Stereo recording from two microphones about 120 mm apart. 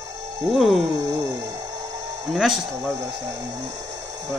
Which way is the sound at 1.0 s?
25° right (ahead or behind).